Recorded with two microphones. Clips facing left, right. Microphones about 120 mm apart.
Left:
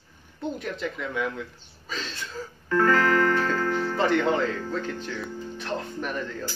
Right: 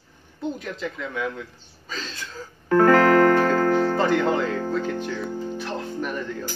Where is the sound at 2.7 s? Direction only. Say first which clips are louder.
Right 6 dB; 45° right (ahead or behind).